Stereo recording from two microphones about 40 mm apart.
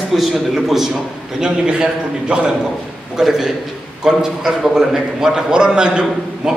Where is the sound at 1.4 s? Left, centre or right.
Right.